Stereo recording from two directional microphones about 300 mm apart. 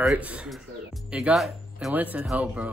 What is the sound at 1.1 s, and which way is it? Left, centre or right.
Speech, centre.